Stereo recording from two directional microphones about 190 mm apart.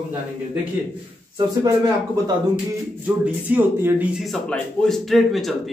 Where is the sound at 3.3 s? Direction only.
10° right (ahead or behind).